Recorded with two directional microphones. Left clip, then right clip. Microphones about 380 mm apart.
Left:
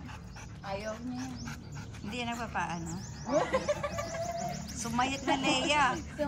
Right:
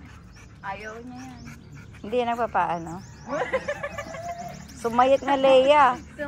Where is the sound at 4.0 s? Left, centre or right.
Centre.